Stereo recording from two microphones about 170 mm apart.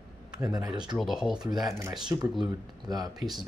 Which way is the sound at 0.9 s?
5° right (ahead or behind).